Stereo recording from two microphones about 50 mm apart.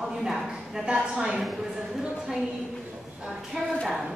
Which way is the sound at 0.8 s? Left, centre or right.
Centre.